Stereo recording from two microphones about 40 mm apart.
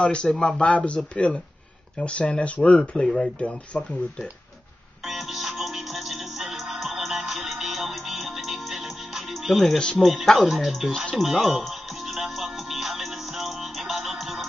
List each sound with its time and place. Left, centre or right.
0.0 s a man's voice: left
3.0 s speech: centre
3.3 s speech: left
5.0 s music: centre
9.4 s speech: centre
11.1 s music: centre